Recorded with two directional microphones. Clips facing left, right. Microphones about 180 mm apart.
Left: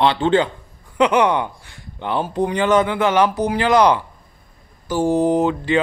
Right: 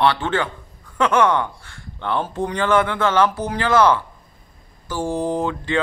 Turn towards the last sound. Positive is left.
turn(degrees=15)  # may be behind; listen again after turning